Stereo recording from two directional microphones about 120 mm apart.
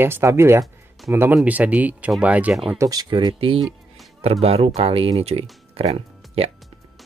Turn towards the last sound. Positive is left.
turn(degrees=-55)  # may be behind; listen again after turning